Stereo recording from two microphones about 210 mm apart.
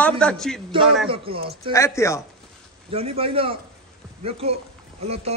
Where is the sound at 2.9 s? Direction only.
25° right (ahead or behind).